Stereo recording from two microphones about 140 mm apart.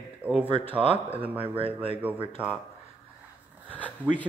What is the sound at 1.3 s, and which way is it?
Speech, 40° right (ahead or behind).